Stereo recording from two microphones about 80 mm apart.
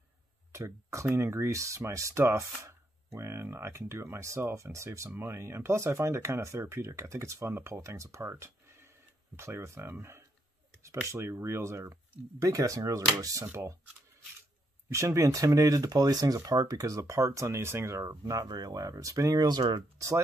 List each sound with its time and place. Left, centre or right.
0.5 s speech: right
14.9 s speech: right